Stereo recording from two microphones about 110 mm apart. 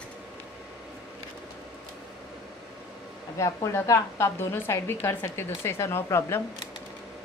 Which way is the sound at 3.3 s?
30° left (ahead or behind).